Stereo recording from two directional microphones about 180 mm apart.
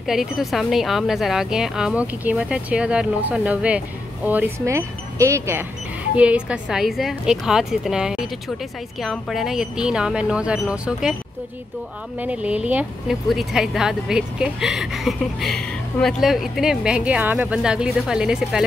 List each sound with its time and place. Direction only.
0.0 s speech: centre (ahead or behind)
12.2 s speech: 5° right (ahead or behind)